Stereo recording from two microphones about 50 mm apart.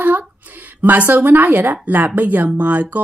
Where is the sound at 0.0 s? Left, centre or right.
Right.